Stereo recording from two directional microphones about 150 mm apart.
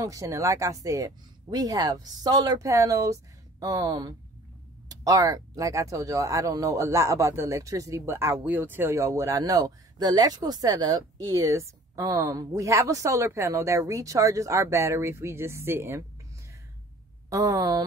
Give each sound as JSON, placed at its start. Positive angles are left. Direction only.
{"t": 0.0, "sound": "speech", "side_deg": -20}
{"t": 17.3, "sound": "speech", "side_deg": -25}